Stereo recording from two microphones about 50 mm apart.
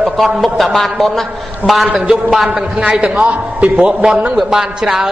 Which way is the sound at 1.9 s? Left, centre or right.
Right.